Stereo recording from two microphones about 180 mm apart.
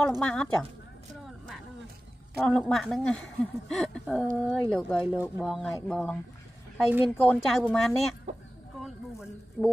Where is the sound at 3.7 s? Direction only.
Centre (ahead or behind).